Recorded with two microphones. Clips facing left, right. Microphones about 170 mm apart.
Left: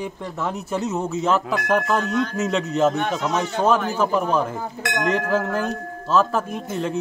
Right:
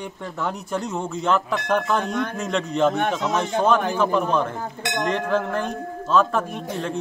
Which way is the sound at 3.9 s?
5° left (ahead or behind).